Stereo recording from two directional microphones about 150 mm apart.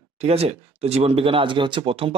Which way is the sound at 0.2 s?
45° right (ahead or behind).